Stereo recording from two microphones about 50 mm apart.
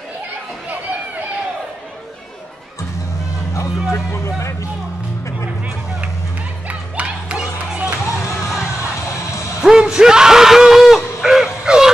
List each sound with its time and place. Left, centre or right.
3.5 s speech: left
6.7 s music: right
9.6 s speech: centre
11.1 s a sound: centre